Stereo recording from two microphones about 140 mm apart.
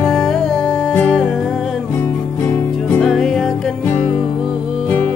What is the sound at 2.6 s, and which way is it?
Music, 15° left (ahead or behind).